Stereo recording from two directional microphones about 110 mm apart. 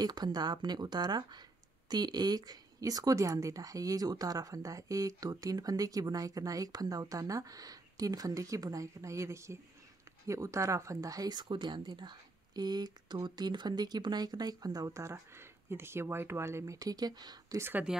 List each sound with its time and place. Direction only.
0.0 s a woman's voice: 40° right (ahead or behind)
17.6 s speech: 20° right (ahead or behind)